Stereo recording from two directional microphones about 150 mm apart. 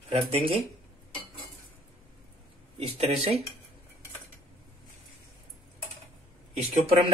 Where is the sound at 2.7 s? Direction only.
40° right (ahead or behind).